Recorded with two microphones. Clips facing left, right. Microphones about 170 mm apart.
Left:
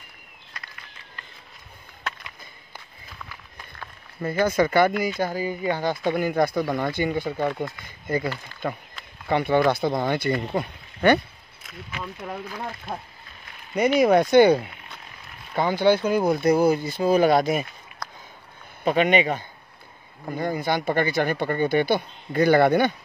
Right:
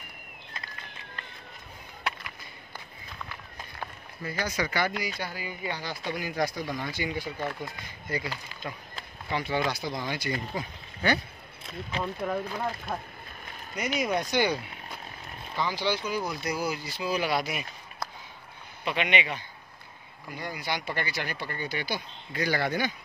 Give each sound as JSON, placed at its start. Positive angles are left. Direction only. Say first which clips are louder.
{"t": 4.2, "sound": "speech", "louder": "left 10 dB", "side_deg": 50}
{"t": 11.6, "sound": "speech", "louder": "right 3 dB", "side_deg": -30}
{"t": 13.9, "sound": "speech", "louder": "left 12 dB", "side_deg": 55}
{"t": 18.9, "sound": "speech", "louder": "left 9 dB", "side_deg": 45}